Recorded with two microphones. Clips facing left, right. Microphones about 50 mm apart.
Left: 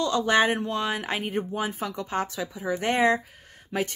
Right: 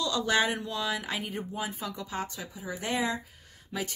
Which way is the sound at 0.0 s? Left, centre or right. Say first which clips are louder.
Left 5 dB; left.